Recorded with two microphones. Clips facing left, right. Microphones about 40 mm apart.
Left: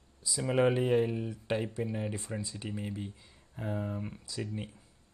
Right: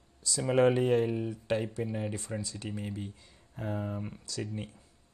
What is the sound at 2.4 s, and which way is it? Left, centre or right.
Speech, left.